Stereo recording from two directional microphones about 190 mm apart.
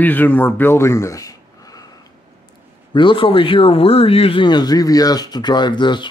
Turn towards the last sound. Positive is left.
turn(degrees=25)  # may be behind; listen again after turning